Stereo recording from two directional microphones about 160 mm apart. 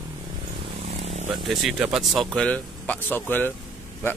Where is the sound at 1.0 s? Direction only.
40° right (ahead or behind).